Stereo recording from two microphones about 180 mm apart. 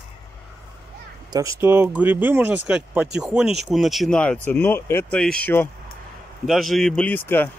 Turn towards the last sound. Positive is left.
turn(degrees=10)  # may be behind; listen again after turning